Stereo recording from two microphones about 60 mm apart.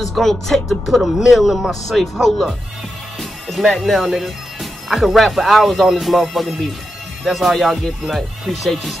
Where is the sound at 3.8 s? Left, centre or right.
Centre.